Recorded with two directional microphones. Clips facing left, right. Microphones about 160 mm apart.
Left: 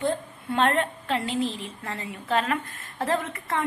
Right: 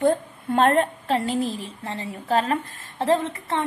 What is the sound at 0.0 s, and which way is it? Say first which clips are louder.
A woman's voice: right 6 dB; 45° right (ahead or behind).